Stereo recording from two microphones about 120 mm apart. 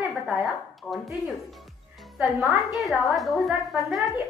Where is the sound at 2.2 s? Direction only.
Centre (ahead or behind).